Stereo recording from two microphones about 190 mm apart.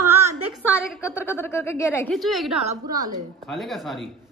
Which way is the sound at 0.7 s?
15° left (ahead or behind).